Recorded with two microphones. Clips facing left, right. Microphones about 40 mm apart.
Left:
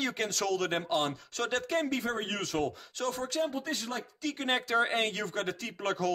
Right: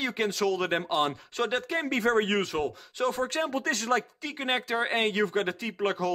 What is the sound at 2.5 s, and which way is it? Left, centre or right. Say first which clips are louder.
Speech: right 3 dB; centre.